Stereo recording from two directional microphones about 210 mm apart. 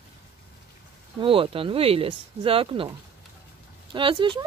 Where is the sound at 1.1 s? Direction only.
25° right (ahead or behind).